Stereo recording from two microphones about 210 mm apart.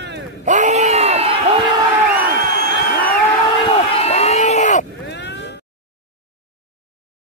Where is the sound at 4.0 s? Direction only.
30° left (ahead or behind).